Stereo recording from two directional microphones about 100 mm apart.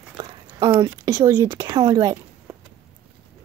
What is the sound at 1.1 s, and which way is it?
Speech, 40° right (ahead or behind).